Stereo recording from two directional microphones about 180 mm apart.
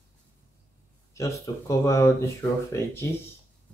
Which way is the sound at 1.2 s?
15° left (ahead or behind).